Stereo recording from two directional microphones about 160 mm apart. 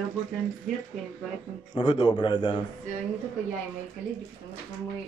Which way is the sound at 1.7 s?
30° left (ahead or behind).